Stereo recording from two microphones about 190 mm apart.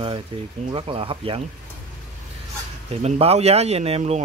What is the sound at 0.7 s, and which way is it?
Speech, 25° right (ahead or behind).